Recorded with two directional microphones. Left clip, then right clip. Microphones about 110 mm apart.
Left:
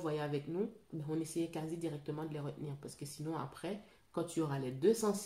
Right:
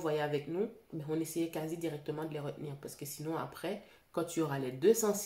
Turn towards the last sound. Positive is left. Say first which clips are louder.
# right 4 dB
turn(degrees=5)  # may be behind; listen again after turning